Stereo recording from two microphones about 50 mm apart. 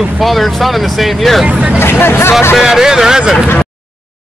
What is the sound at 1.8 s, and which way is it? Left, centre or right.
Speech, left.